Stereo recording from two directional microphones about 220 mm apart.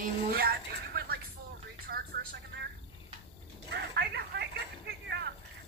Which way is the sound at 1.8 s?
45° right (ahead or behind).